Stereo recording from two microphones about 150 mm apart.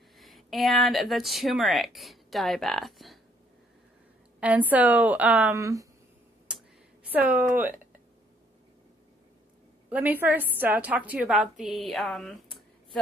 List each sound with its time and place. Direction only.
0.2 s speech: centre (ahead or behind)
4.4 s a woman's voice: 10° right (ahead or behind)
5.6 s speech: 20° right (ahead or behind)
6.4 s a sound: 5° right (ahead or behind)
9.8 s a woman's voice: 10° right (ahead or behind)